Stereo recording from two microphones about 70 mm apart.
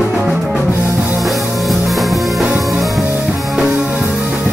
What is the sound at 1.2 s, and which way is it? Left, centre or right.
Music, centre.